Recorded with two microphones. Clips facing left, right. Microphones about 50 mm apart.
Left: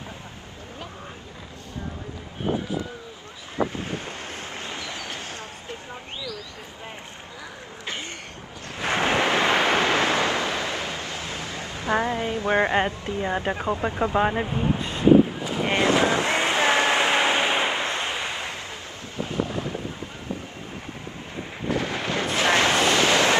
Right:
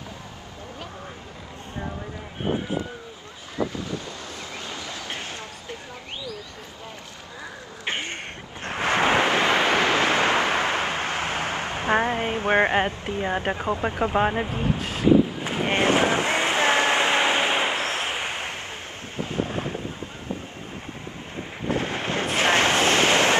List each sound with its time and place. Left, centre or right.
2.4 s speech: right
3.5 s wind: left
4.6 s train: left
7.8 s a sound: right
8.6 s waves: right
9.8 s a sound: right
13.7 s speech: right
14.1 s speech: centre
15.4 s vehicle: right
16.4 s a sound: right
19.1 s wind noise: right
21.6 s wind noise: right